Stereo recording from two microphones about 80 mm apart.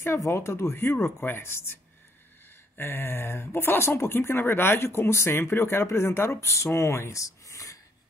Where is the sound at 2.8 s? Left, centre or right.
Left.